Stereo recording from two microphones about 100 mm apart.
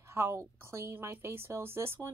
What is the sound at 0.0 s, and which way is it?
A woman's voice, 25° right (ahead or behind).